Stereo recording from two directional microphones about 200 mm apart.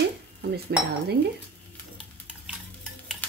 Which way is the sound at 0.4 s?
55° right (ahead or behind).